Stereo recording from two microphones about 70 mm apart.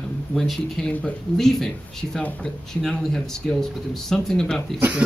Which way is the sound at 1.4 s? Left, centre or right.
Centre.